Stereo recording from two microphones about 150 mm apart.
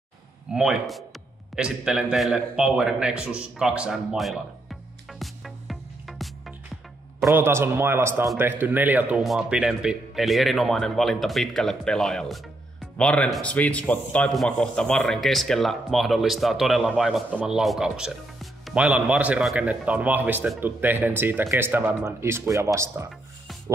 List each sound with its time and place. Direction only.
0.5 s a man's voice: 5° right (ahead or behind)
5.2 s music: centre (ahead or behind)
7.2 s a man's voice: 15° right (ahead or behind)